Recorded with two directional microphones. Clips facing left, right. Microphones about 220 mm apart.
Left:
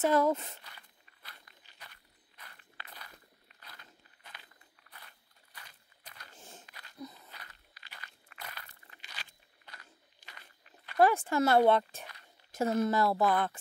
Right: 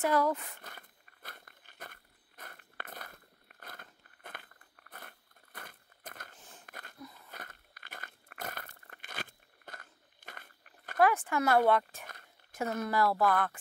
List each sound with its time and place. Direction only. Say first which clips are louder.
0.0 s speech: left 2 dB; 25° left (ahead or behind)
0.6 s a sound: right 5 dB; 50° right (ahead or behind)
6.3 s a sound: left 3 dB; 25° left (ahead or behind)
6.6 s dog: right 6 dB; 50° right (ahead or behind)
7.2 s crunch: right 5 dB; 50° right (ahead or behind)
11.0 s speech: left 2 dB; 30° left (ahead or behind)